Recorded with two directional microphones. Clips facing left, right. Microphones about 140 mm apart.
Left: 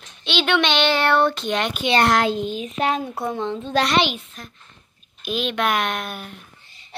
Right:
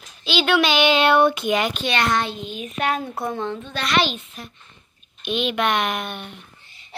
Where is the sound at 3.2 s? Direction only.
15° left (ahead or behind).